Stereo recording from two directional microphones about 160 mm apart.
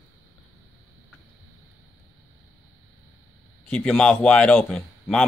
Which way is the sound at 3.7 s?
5° left (ahead or behind).